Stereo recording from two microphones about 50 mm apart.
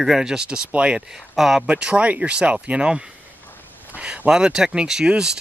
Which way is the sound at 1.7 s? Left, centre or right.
Centre.